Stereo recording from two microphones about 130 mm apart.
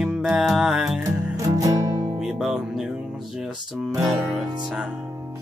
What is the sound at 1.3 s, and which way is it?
Music, 25° right (ahead or behind).